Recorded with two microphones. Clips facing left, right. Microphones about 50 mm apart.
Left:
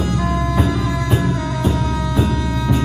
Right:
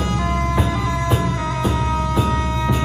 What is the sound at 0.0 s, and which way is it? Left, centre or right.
Music, right.